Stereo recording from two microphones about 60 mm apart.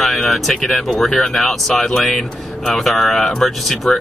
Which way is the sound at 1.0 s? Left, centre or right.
Centre.